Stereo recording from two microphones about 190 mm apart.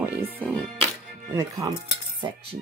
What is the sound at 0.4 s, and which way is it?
Music, 5° left (ahead or behind).